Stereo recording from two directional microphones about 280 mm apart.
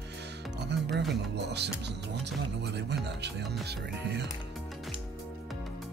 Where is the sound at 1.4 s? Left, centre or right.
Right.